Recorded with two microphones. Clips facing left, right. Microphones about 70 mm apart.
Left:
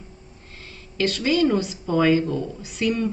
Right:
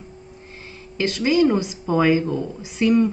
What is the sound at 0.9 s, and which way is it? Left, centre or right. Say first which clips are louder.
Speech: right 3 dB; right.